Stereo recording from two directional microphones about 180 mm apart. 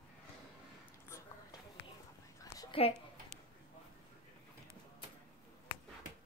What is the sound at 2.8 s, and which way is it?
Speech, 35° left (ahead or behind).